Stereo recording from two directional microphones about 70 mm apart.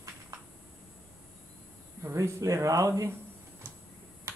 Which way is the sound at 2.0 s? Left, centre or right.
Right.